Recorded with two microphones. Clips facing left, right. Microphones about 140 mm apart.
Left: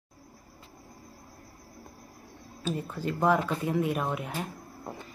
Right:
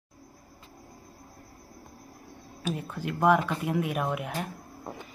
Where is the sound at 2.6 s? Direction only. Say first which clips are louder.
Left 1 dB; 10° right (ahead or behind).